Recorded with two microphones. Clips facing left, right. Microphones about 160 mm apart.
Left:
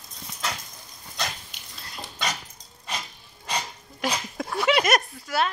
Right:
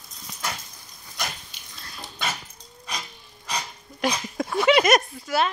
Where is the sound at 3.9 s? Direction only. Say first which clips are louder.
Right 3 dB; centre (ahead or behind).